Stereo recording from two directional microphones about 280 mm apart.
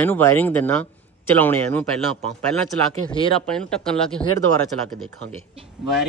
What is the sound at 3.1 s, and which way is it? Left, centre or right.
Speech, centre.